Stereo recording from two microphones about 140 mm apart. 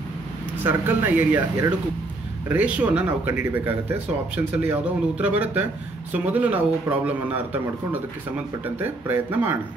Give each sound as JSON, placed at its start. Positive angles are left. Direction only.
{"t": 0.7, "sound": "a man's voice", "side_deg": -15}